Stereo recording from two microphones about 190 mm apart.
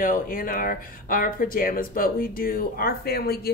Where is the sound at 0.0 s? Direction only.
45° left (ahead or behind).